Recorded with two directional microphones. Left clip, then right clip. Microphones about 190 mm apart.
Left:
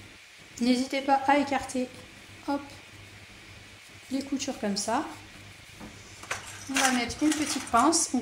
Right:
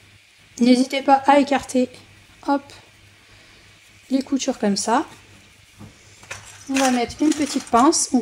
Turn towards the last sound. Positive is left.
turn(degrees=-50)  # may be behind; listen again after turning